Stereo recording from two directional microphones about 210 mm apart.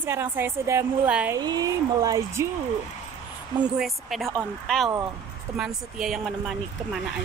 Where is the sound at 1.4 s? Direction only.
20° right (ahead or behind).